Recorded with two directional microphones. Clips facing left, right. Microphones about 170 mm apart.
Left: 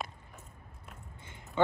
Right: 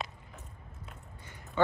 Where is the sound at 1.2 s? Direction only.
20° left (ahead or behind).